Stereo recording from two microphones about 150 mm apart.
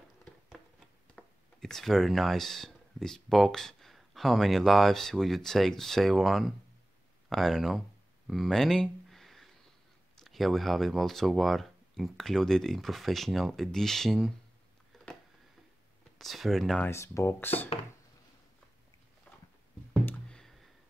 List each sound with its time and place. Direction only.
1.1 s speech: 5° left (ahead or behind)
8.3 s a sound: centre (ahead or behind)
10.1 s speech: centre (ahead or behind)
16.2 s speech: centre (ahead or behind)
16.8 s speech: 20° left (ahead or behind)
20.1 s a sound: 5° left (ahead or behind)